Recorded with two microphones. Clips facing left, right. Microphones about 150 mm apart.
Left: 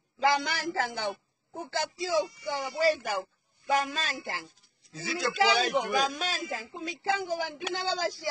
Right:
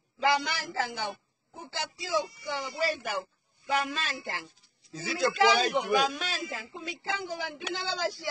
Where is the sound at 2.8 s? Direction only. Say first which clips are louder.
Left 6 dB; 40° left (ahead or behind).